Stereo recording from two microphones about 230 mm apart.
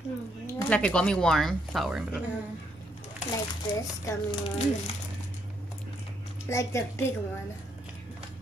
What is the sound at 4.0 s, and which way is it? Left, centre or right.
Speech, centre.